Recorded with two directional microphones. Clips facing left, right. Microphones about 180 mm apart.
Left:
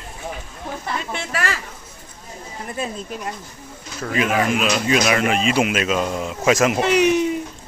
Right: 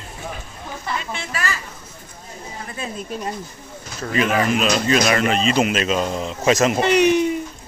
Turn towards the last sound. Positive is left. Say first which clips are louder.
# right 1 dB
turn(degrees=0)  # may be behind; listen again after turning